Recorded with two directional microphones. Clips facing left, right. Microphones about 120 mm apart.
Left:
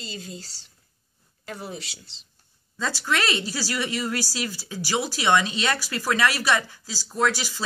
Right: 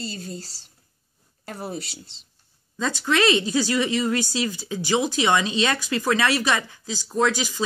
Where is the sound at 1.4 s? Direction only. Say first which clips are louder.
Right 3 dB; 40° right (ahead or behind).